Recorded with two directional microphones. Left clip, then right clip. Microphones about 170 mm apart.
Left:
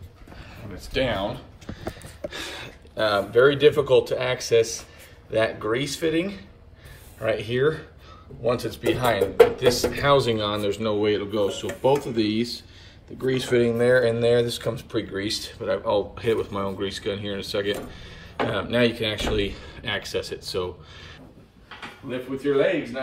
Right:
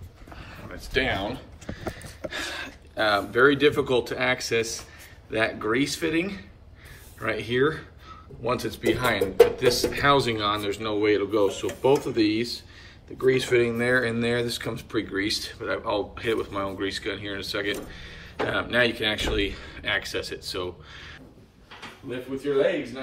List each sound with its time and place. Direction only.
0.7 s speech: 20° left (ahead or behind)
3.0 s speech: 15° left (ahead or behind)